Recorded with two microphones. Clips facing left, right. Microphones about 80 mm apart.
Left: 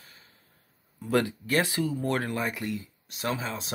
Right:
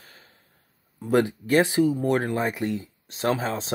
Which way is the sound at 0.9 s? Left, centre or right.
Right.